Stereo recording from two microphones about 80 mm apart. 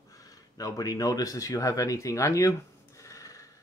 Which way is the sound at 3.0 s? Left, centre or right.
Left.